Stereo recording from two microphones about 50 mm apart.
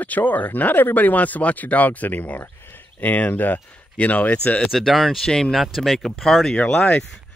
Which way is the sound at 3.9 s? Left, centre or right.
Left.